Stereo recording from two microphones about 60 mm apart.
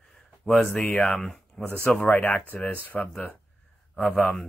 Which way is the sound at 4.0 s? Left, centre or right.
Left.